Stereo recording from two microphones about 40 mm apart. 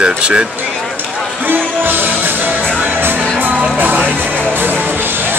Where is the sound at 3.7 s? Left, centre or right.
Right.